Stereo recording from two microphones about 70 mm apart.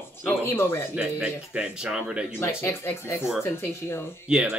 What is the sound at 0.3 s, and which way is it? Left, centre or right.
Speech, left.